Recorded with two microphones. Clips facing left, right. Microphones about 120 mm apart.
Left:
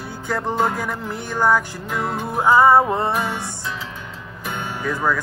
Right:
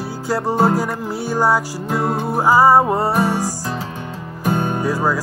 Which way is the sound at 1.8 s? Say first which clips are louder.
Right 5 dB; 35° right (ahead or behind).